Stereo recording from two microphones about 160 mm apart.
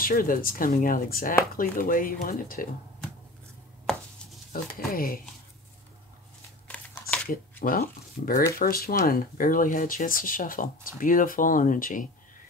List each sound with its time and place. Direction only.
0.0 s speech: 65° left (ahead or behind)
4.5 s speech: 65° left (ahead or behind)
6.7 s a sound: 5° left (ahead or behind)
7.6 s speech: 65° left (ahead or behind)